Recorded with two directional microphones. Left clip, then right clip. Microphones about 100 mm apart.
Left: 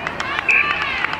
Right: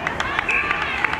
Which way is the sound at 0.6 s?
15° right (ahead or behind).